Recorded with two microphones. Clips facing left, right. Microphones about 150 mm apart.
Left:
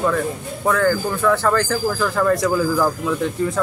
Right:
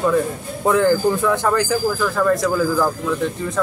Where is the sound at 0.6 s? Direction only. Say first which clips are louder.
Right 3 dB; 20° right (ahead or behind).